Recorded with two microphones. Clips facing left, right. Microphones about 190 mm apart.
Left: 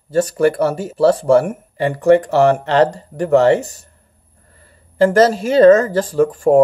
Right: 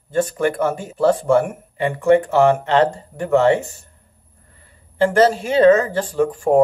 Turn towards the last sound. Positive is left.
turn(degrees=40)  # may be behind; listen again after turning